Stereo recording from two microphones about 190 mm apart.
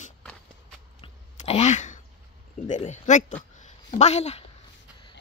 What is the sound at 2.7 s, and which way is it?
Speech, 40° left (ahead or behind).